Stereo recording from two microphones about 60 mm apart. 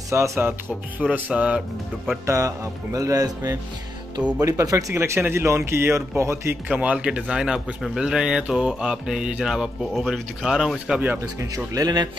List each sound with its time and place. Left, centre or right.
0.1 s speech: right
0.4 s speech: right
1.3 s speech: centre
2.2 s speech: right
4.4 s speech: right
4.9 s speech: right
6.7 s speech: centre
11.3 s speech: right